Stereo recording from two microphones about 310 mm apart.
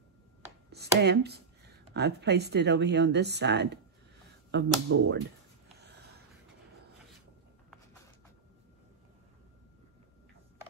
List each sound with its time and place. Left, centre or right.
0.7 s speech: right